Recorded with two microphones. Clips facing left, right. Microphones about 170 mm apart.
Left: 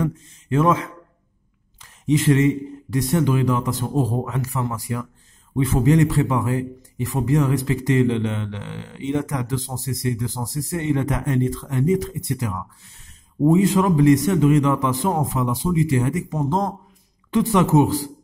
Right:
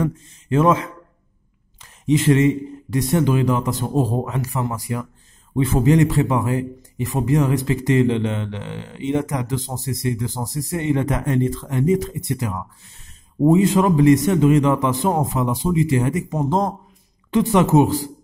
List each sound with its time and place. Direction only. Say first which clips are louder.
0.0 s a man's voice: right 1 dB; 25° right (ahead or behind)
5.5 s a man's voice: right 1 dB; 30° right (ahead or behind)